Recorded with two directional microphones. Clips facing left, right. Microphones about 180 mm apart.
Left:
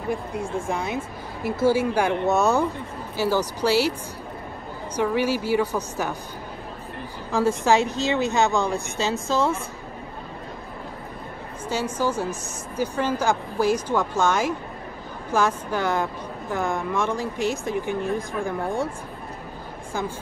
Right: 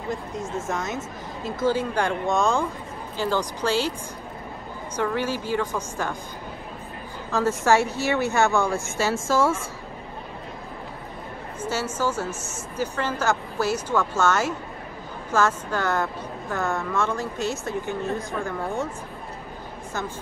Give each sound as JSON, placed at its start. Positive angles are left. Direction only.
{"t": 0.1, "sound": "a woman's voice", "side_deg": 10}
{"t": 4.9, "sound": "a woman's voice", "side_deg": 10}
{"t": 7.2, "sound": "a woman's voice", "side_deg": 10}
{"t": 11.7, "sound": "a woman's voice", "side_deg": 15}